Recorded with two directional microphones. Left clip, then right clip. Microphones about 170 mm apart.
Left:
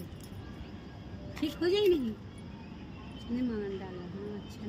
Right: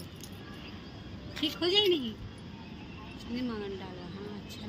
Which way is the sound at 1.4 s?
65° left (ahead or behind).